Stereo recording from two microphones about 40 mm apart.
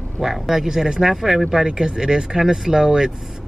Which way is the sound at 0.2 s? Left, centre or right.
Centre.